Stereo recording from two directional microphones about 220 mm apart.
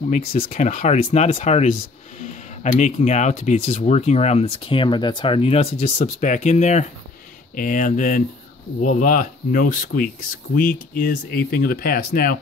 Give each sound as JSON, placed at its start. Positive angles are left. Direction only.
{"t": 0.1, "sound": "speech", "side_deg": 25}
{"t": 0.5, "sound": "speech", "side_deg": 35}